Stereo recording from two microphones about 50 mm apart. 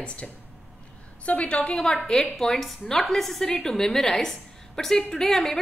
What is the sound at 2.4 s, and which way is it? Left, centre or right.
A woman's voice, centre.